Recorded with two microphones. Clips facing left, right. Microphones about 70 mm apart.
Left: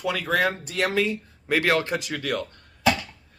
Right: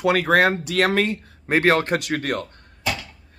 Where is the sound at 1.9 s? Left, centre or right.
Right.